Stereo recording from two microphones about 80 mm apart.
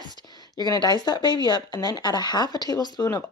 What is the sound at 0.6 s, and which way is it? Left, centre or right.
Speech, left.